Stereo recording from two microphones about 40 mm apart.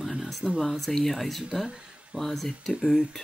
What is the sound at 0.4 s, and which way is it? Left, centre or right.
Speech, right.